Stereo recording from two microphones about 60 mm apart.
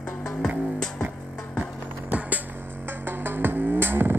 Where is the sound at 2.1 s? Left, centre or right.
Right.